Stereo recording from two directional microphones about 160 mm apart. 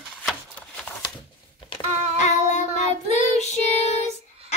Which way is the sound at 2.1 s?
45° left (ahead or behind).